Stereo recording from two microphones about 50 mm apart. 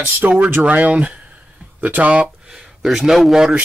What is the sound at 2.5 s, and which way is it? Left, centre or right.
A man's voice, centre.